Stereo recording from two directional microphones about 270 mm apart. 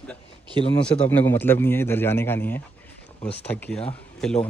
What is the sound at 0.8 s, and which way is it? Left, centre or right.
A man's voice, centre.